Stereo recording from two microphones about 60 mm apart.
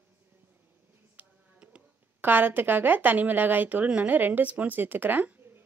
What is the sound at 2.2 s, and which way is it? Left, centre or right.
A woman's voice, right.